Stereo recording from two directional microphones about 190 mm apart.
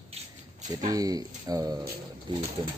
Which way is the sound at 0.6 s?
20° right (ahead or behind).